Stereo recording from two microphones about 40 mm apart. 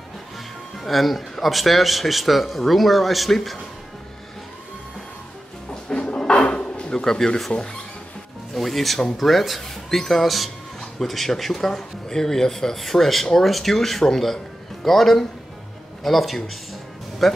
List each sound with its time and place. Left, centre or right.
0.7 s a man's voice: centre
5.7 s a sound: left
7.1 s speech: centre
8.5 s a man's voice: centre